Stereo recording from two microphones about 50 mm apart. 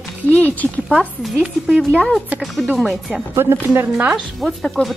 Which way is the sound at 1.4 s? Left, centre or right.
Centre.